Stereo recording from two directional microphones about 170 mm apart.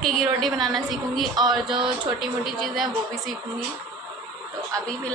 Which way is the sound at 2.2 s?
Centre (ahead or behind).